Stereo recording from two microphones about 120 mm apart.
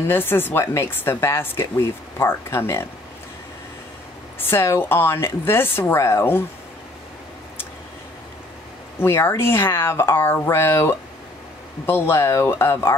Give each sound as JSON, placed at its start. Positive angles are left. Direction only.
{"t": 0.1, "sound": "speech", "side_deg": 20}
{"t": 4.4, "sound": "speech", "side_deg": 20}
{"t": 9.0, "sound": "speech", "side_deg": 20}